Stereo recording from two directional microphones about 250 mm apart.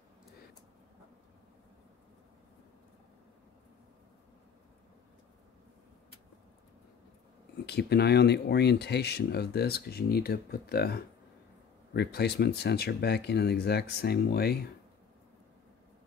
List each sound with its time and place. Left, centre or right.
7.6 s speech: left